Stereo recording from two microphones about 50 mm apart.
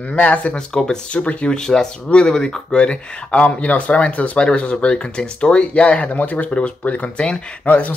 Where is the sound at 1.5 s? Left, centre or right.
Centre.